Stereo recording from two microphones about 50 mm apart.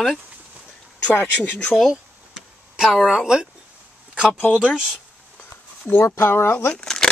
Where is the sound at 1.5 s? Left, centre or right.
Left.